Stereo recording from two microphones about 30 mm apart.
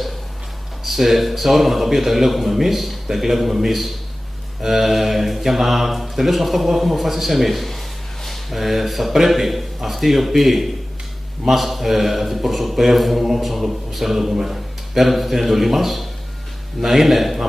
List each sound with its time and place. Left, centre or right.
0.8 s mantra: centre
14.4 s a man's voice: centre
16.8 s mantra: centre